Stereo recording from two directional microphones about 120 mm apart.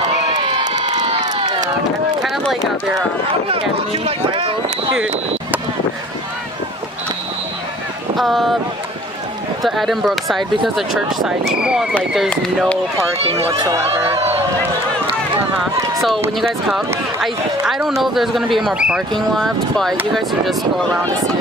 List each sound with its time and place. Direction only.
0.3 s crowd: 45° right (ahead or behind)
2.2 s a sound: centre (ahead or behind)
3.4 s speech: 55° right (ahead or behind)
4.9 s speech: 10° right (ahead or behind)
8.2 s speech: centre (ahead or behind)
9.6 s speech: centre (ahead or behind)
13.2 s speech: 55° right (ahead or behind)
13.6 s speech: 30° right (ahead or behind)
14.1 s speech: 60° right (ahead or behind)
15.6 s speech: centre (ahead or behind)